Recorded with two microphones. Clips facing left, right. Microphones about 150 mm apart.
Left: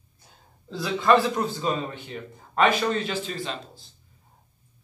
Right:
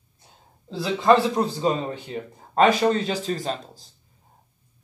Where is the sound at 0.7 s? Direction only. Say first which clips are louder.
Right 3 dB; 25° right (ahead or behind); by 3.8 s 40° right (ahead or behind).